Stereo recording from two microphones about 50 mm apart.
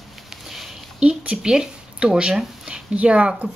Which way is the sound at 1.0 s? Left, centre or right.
Right.